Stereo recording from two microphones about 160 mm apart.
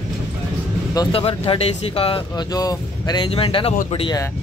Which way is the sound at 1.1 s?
35° left (ahead or behind).